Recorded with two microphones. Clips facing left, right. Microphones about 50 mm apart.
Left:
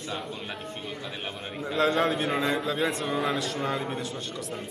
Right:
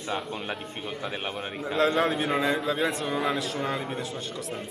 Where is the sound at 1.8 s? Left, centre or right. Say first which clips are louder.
Even; centre.